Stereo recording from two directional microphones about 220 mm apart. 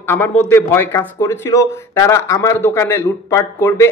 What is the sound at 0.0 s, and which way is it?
A man's voice, 10° left (ahead or behind).